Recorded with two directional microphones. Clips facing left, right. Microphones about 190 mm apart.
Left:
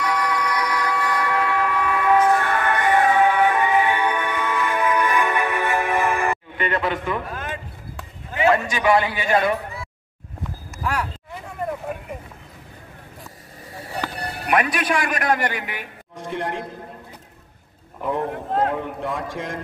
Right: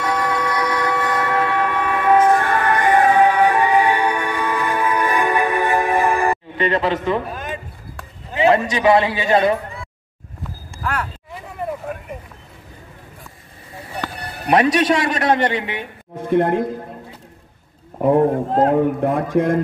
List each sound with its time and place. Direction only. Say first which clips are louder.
0.0 s a sound: right 3 dB; 25° right (ahead or behind)
2.1 s music: right 4 dB; 40° right (ahead or behind)
8.3 s a man's voice: right 4 dB; 25° right (ahead or behind)
10.8 s speech: right 1 dB; 10° left (ahead or behind)
14.5 s a man's voice: right 6 dB; 25° right (ahead or behind)
16.3 s a man's voice: right 11 dB; 50° right (ahead or behind)
17.9 s a man's voice: right 10 dB; 50° right (ahead or behind)